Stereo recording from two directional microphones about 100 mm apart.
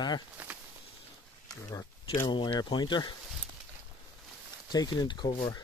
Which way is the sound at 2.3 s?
50° left (ahead or behind).